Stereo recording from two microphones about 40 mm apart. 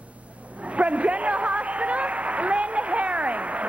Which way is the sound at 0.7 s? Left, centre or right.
Right.